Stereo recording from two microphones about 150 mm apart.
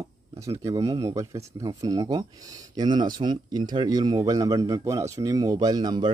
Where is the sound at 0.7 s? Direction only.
25° right (ahead or behind).